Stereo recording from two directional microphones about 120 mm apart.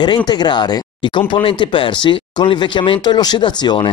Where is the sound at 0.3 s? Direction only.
35° left (ahead or behind).